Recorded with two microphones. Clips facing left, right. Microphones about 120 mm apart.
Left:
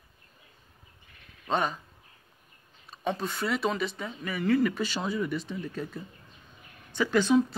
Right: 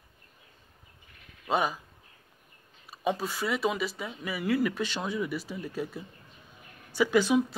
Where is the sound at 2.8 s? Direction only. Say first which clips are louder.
Right 1 dB; 5° right (ahead or behind).